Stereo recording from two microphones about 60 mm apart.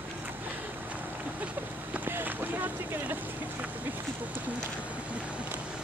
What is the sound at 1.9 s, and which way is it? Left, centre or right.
Boat, right.